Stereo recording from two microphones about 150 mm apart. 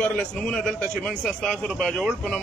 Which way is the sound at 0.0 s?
5° left (ahead or behind).